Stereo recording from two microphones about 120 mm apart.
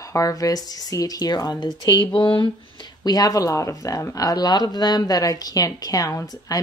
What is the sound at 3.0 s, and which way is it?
Speech, 35° left (ahead or behind).